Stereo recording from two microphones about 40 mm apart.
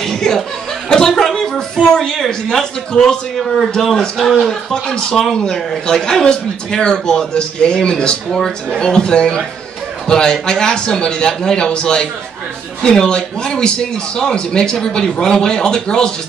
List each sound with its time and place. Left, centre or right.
0.0 s chuckle: centre
0.8 s speech: centre
2.1 s a man's voice: centre
5.3 s a man's voice: left
8.3 s a man's voice: centre